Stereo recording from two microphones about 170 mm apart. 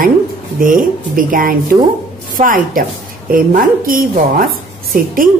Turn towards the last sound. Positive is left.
turn(degrees=-55)  # may be behind; listen again after turning